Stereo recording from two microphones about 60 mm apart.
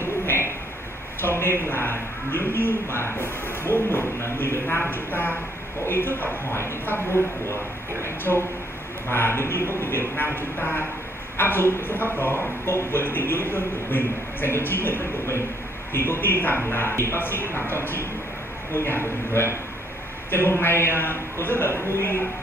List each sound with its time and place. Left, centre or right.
0.0 s bird: left
1.2 s a man's voice: left